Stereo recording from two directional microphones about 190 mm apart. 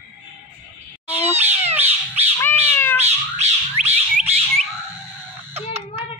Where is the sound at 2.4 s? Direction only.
10° left (ahead or behind).